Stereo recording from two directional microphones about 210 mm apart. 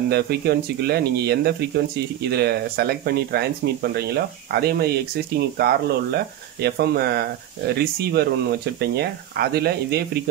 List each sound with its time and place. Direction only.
0.1 s speech: 50° right (ahead or behind)